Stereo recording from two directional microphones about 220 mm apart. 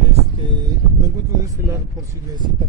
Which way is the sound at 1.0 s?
15° right (ahead or behind).